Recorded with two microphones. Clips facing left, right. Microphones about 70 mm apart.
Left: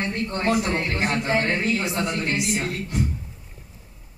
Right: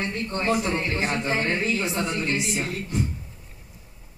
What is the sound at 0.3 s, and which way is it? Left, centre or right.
Speech, left.